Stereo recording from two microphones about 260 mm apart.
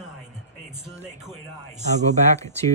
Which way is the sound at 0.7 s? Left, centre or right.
Centre.